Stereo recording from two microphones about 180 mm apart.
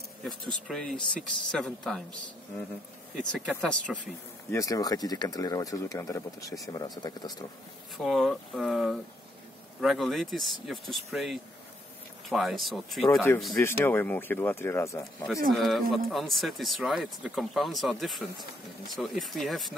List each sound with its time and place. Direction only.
0.7 s speech: 5° left (ahead or behind)
3.3 s speech: 5° left (ahead or behind)
4.5 s speech: 20° left (ahead or behind)
8.0 s speech: centre (ahead or behind)
13.6 s speech: 10° left (ahead or behind)
15.5 s speech: centre (ahead or behind)